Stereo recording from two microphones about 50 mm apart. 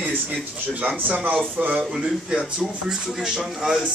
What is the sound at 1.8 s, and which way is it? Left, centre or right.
Speech, centre.